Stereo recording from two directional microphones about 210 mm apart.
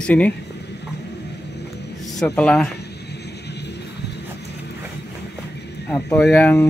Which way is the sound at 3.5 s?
55° left (ahead or behind).